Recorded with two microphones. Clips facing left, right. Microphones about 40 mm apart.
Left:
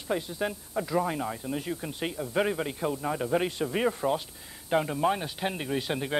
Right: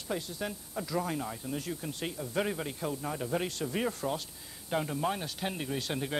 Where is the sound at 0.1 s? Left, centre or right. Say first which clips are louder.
Left 6 dB; left.